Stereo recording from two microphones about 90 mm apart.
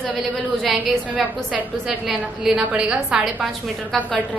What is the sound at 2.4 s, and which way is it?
A woman's voice, 10° right (ahead or behind).